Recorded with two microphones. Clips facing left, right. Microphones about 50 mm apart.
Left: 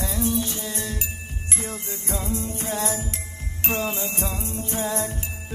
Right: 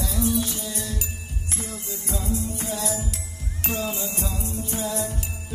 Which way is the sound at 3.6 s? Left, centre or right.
Left.